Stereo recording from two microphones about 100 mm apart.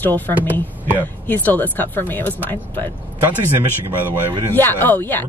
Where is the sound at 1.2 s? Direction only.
20° left (ahead or behind).